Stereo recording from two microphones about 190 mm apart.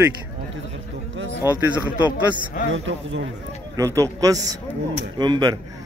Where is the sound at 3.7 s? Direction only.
15° right (ahead or behind).